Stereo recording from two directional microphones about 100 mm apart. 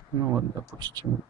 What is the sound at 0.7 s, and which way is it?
Speech, 45° right (ahead or behind).